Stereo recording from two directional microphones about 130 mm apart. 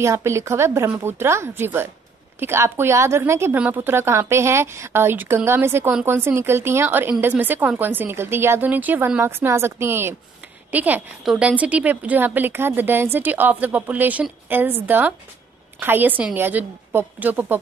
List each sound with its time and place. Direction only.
0.0 s a woman's voice: 20° right (ahead or behind)